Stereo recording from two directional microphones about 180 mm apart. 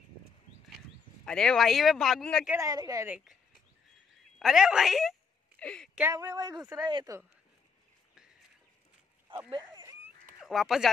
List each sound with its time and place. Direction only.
1.2 s speech: 5° left (ahead or behind)
2.4 s speech: 15° right (ahead or behind)
4.4 s a woman's voice: 5° right (ahead or behind)
6.1 s speech: 20° right (ahead or behind)
9.5 s a sound: 25° right (ahead or behind)
10.4 s speech: centre (ahead or behind)